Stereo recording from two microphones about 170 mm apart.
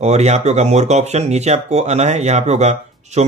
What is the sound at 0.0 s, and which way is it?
Speech, 40° right (ahead or behind).